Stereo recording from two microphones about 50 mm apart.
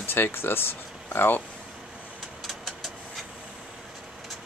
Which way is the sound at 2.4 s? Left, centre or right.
Centre.